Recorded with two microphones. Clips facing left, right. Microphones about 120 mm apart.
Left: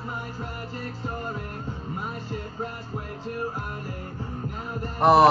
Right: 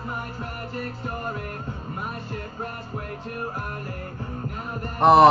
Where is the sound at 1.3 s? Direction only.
55° right (ahead or behind).